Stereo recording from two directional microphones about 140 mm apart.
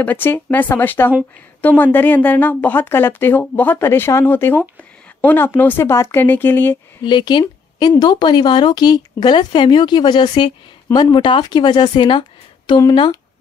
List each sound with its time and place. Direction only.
0.0 s a woman's voice: 15° left (ahead or behind)
7.1 s speech: 35° left (ahead or behind)